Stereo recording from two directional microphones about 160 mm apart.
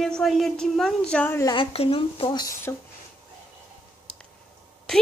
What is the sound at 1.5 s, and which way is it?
Speech, 35° left (ahead or behind).